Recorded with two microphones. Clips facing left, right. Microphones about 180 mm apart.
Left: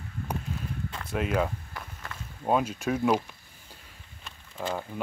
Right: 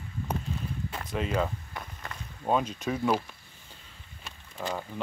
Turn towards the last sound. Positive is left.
turn(degrees=5)  # may be behind; listen again after turning